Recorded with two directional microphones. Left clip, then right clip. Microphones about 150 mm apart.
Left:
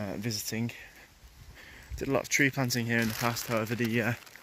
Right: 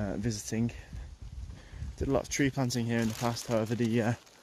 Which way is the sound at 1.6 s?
25° right (ahead or behind).